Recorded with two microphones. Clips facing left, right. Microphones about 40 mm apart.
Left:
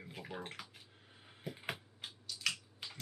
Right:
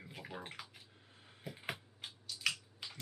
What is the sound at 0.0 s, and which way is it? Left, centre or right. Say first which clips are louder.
Bathtub: left 2 dB; centre.